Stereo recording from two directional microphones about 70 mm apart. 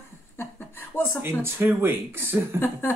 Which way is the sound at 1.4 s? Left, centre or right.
Right.